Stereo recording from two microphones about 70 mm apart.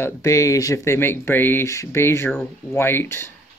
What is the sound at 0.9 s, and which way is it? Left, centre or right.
Speech, left.